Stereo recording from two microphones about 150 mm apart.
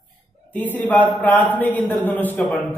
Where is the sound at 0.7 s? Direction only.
10° left (ahead or behind).